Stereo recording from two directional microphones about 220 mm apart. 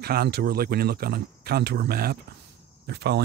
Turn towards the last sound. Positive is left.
turn(degrees=-50)  # may be behind; listen again after turning